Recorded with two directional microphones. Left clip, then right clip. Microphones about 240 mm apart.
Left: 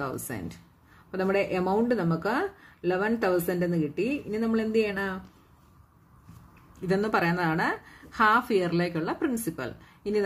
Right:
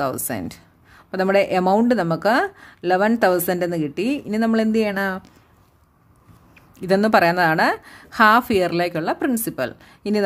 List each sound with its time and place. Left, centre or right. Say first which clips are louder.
0.0 s speech: right 10 dB; right
6.8 s a woman's voice: right 10 dB; right